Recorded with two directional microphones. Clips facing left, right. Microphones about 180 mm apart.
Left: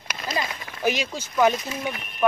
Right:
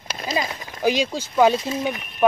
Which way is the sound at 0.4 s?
15° right (ahead or behind).